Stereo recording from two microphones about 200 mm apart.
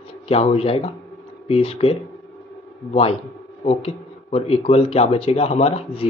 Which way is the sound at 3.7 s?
30° left (ahead or behind).